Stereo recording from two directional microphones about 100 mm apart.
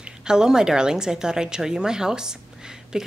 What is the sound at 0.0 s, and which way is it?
A woman's voice, 5° right (ahead or behind).